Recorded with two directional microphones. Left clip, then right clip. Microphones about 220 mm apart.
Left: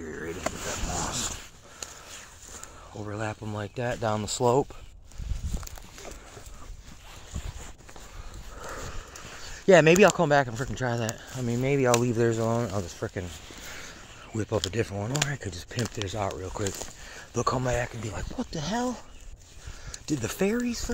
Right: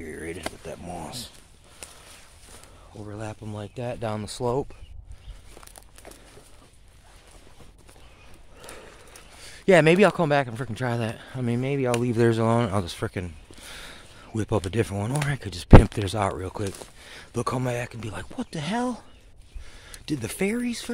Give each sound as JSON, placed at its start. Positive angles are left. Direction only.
{"t": 0.0, "sound": "a sound", "side_deg": -25}
{"t": 2.9, "sound": "speech", "side_deg": 5}
{"t": 9.7, "sound": "speech", "side_deg": -20}
{"t": 11.6, "sound": "speech", "side_deg": -15}
{"t": 12.2, "sound": "speech", "side_deg": -40}
{"t": 13.8, "sound": "speech", "side_deg": -30}
{"t": 17.1, "sound": "speech", "side_deg": -30}
{"t": 20.1, "sound": "speech", "side_deg": -20}